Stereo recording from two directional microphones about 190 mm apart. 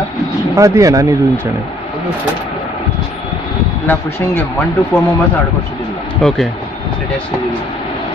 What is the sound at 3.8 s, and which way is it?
Speech, 10° left (ahead or behind).